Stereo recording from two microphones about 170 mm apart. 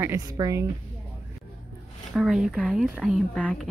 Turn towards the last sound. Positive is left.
turn(degrees=5)  # may be behind; listen again after turning